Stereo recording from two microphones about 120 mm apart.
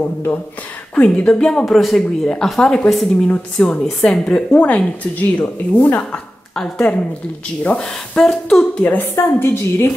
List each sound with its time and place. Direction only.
0.9 s a woman's voice: 10° left (ahead or behind)
9.1 s a woman's voice: 20° left (ahead or behind)